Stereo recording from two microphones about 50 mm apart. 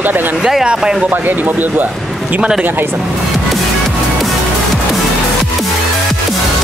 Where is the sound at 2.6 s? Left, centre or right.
Right.